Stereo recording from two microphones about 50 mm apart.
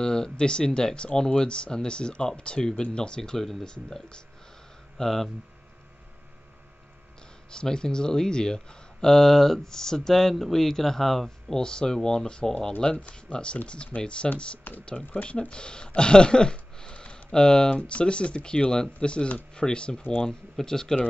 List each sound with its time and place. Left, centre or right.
0.0 s speech: centre
4.9 s speech: centre
7.5 s speech: centre
14.7 s speech: left
15.2 s speech: centre